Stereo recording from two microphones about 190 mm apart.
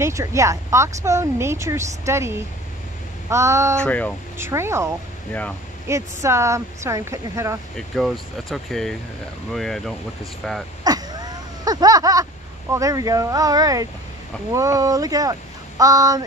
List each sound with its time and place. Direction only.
0.0 s speech: 15° right (ahead or behind)
3.8 s speech: 10° left (ahead or behind)
4.4 s speech: 15° right (ahead or behind)
7.7 s speech: centre (ahead or behind)
10.8 s a sound: 20° right (ahead or behind)
12.7 s speech: 15° right (ahead or behind)